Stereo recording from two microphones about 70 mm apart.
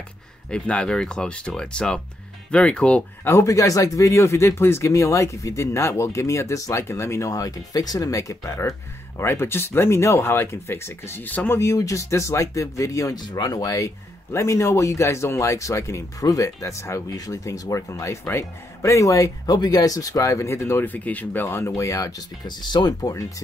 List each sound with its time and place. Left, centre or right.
0.5 s speech: centre
3.3 s speech: left
11.6 s speech: left
13.2 s speech: left
18.2 s speech: left
19.4 s speech: left